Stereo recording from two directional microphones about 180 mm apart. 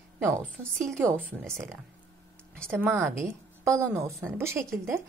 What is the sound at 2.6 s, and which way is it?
Speech, 15° right (ahead or behind).